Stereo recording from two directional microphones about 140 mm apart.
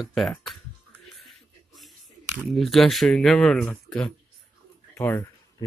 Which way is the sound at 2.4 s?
Centre (ahead or behind).